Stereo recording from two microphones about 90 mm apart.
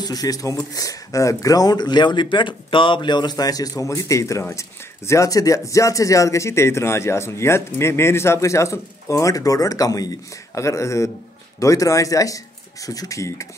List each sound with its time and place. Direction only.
0.0 s speech: 45° left (ahead or behind)